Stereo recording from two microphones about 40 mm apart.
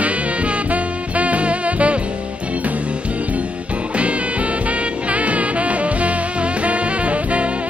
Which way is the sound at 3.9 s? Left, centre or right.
Right.